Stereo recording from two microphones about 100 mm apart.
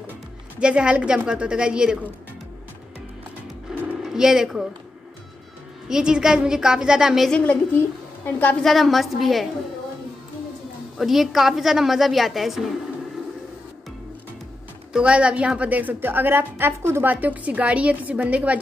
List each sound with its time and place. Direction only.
0.6 s a woman's voice: 10° right (ahead or behind)
3.7 s a sound: 5° right (ahead or behind)
4.0 s speech: 5° right (ahead or behind)
5.9 s a woman's voice: 5° right (ahead or behind)
7.2 s a woman's voice: 10° left (ahead or behind)
8.6 s a woman's voice: centre (ahead or behind)
11.0 s a woman's voice: centre (ahead or behind)
14.9 s a woman's voice: 10° right (ahead or behind)